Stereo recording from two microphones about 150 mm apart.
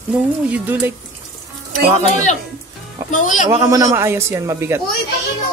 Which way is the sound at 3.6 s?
20° right (ahead or behind).